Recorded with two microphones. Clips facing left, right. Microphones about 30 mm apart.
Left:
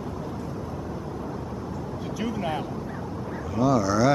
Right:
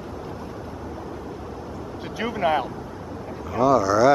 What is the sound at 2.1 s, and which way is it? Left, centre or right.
Vehicle, right.